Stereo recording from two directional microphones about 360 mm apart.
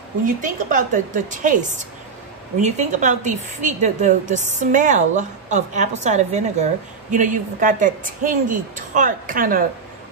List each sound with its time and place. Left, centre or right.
0.4 s a woman's voice: right